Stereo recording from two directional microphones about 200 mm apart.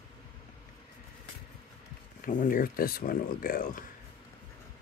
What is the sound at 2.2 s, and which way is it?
Speech, 40° left (ahead or behind).